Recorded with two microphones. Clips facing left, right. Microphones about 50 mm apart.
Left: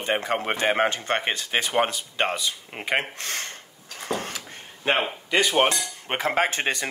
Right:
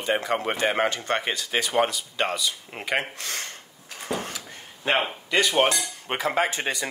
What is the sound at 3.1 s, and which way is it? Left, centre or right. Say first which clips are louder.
Speech: left 1 dB; left.